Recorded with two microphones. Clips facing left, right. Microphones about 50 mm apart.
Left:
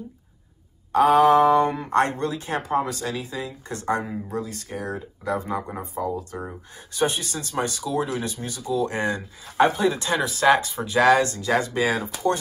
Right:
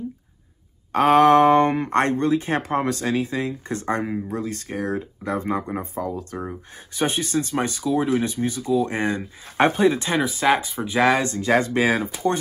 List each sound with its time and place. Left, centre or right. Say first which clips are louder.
0.9 s speech: right 1 dB; right
2.6 s speech: right 2 dB; right
6.9 s speech: right 1 dB; right
10.4 s speech: left 3 dB; centre
10.8 s speech: left 1 dB; right